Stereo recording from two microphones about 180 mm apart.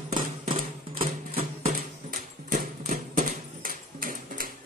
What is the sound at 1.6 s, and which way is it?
Horse, 50° right (ahead or behind).